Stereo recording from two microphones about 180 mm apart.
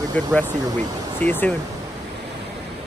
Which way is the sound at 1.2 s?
10° left (ahead or behind).